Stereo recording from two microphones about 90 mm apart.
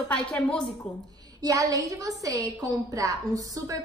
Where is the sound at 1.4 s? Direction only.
40° right (ahead or behind).